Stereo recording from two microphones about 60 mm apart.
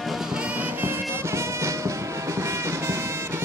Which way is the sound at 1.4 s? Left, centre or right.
Right.